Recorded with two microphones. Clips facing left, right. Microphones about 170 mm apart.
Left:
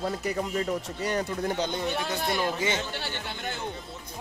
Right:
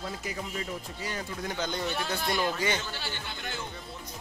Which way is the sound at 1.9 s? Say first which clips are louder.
Left 2 dB; 20° left (ahead or behind).